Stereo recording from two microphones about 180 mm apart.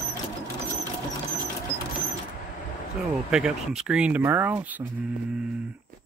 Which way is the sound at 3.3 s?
5° right (ahead or behind).